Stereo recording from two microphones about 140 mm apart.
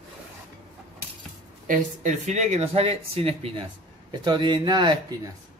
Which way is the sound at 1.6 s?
70° right (ahead or behind).